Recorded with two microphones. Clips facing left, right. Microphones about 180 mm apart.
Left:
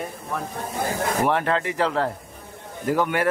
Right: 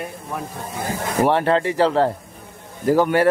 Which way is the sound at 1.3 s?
30° right (ahead or behind).